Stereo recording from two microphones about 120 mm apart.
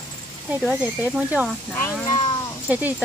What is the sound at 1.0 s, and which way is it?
Speech, 15° right (ahead or behind).